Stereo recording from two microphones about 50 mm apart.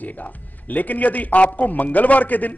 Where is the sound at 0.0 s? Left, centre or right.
Left.